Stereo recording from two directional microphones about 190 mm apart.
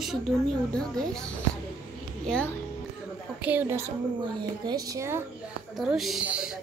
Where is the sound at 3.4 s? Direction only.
10° right (ahead or behind).